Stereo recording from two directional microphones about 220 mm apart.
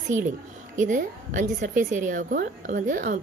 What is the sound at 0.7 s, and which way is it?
A woman's voice, 35° right (ahead or behind).